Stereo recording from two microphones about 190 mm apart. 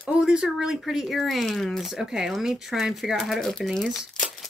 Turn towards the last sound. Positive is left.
turn(degrees=0)  # may be behind; listen again after turning